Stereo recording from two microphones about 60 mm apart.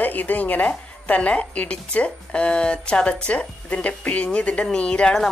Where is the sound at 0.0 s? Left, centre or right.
Left.